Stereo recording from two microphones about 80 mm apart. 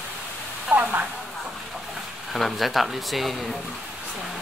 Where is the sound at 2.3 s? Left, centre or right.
Centre.